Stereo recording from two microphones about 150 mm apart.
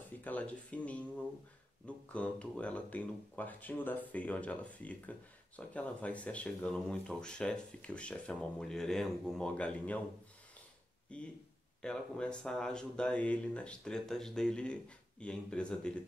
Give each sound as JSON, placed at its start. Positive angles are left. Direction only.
{"t": 0.2, "sound": "speech", "side_deg": 10}
{"t": 11.1, "sound": "speech", "side_deg": 5}